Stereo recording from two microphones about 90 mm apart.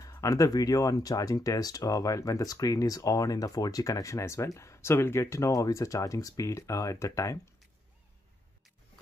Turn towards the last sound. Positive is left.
turn(degrees=35)  # may be behind; listen again after turning